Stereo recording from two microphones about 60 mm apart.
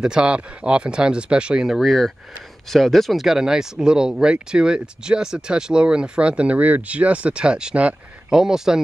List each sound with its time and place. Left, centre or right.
0.0 s speech: centre
1.8 s speech: centre